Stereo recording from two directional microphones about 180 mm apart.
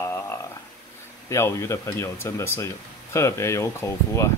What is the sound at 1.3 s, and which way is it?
Speech, 15° left (ahead or behind).